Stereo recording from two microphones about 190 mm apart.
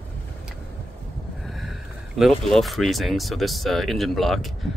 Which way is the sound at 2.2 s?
Centre (ahead or behind).